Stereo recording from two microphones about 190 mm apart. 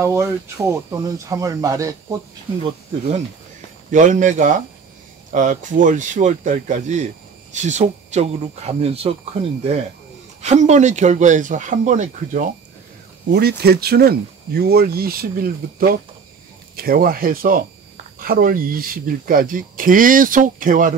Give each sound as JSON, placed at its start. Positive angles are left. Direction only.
{"t": 0.0, "sound": "speech", "side_deg": -15}
{"t": 3.9, "sound": "speech", "side_deg": -40}
{"t": 13.3, "sound": "speech", "side_deg": -60}